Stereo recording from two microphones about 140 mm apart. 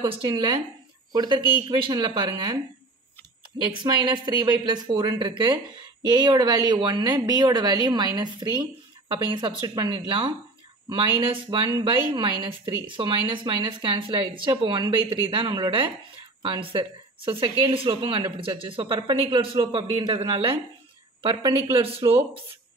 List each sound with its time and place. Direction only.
0.0 s a woman's voice: 35° right (ahead or behind)
3.7 s a woman's voice: 35° right (ahead or behind)